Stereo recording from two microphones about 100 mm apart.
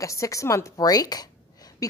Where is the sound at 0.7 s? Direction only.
40° left (ahead or behind).